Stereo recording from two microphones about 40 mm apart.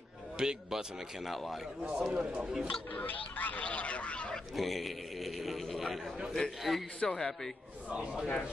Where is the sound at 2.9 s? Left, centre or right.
Left.